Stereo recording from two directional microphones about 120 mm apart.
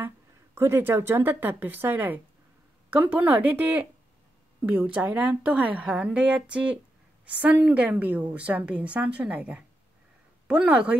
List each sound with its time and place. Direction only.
0.6 s a woman's voice: 20° right (ahead or behind)